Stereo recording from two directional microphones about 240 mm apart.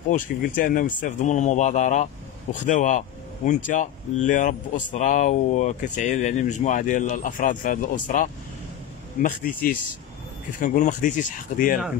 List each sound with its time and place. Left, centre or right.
0.1 s speech: left